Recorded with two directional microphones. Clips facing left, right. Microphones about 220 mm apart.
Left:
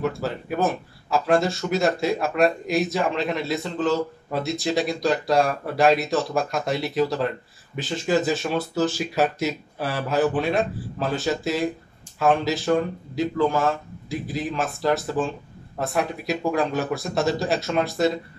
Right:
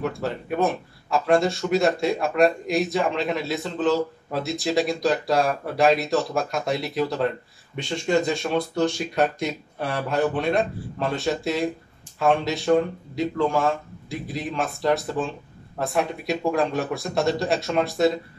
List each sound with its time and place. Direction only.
0.0 s speech: centre (ahead or behind)